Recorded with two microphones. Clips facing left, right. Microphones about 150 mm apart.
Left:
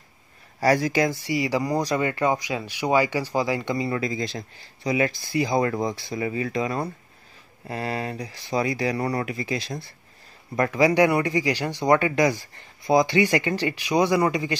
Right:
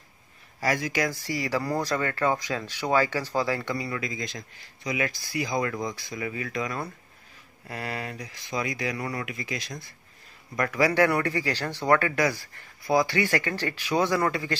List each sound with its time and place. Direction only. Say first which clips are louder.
0.6 s speech: left 6 dB; 35° left (ahead or behind); by 14.6 s 15° left (ahead or behind)